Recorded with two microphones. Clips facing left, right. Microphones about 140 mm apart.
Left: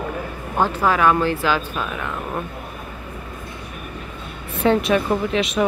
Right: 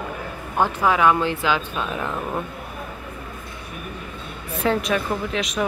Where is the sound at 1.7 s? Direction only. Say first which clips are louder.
Even; 30° right (ahead or behind).